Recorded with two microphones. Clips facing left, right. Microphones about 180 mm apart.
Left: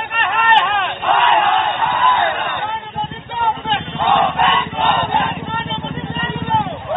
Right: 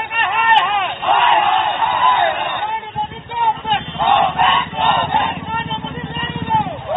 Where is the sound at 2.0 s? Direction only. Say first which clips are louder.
Right 1 dB; 15° right (ahead or behind).